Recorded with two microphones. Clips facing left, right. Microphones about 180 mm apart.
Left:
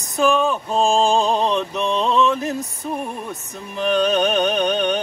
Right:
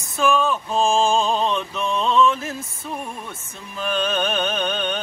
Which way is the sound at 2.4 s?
35° left (ahead or behind).